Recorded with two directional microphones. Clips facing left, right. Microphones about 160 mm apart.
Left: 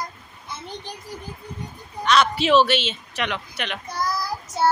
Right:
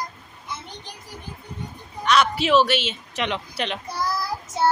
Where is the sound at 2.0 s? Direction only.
10° right (ahead or behind).